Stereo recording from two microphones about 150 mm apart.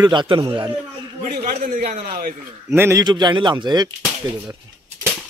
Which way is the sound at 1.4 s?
75° right (ahead or behind).